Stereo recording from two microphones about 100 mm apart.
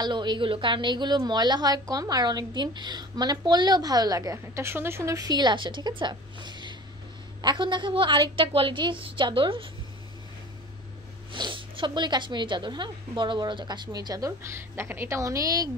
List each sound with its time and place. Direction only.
0.0 s a woman's voice: 50° right (ahead or behind)
11.3 s a woman's voice: 55° right (ahead or behind); by 15.7 s 35° right (ahead or behind)